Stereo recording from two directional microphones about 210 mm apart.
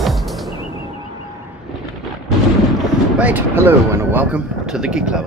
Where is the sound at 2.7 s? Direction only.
5° right (ahead or behind).